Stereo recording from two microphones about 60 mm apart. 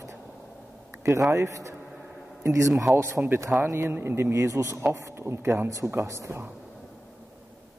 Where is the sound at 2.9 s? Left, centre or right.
Right.